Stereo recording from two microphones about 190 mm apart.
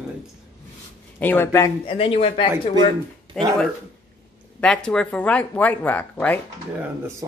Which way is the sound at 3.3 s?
5° left (ahead or behind).